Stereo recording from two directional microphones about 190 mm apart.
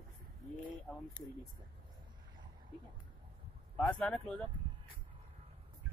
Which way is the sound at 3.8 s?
5° left (ahead or behind).